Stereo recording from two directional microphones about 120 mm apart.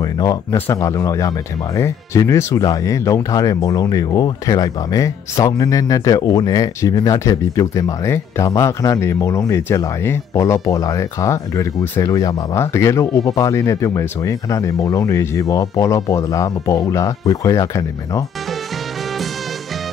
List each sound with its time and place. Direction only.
0.0 s speech: 30° left (ahead or behind)